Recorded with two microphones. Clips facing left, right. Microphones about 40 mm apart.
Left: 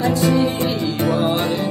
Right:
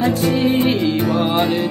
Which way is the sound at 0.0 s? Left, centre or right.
Right.